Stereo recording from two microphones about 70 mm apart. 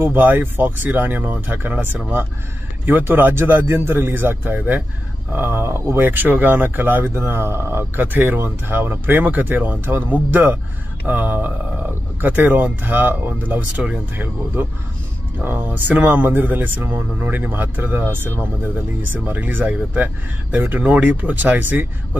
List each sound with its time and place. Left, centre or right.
0.0 s speech: right
5.3 s speech: right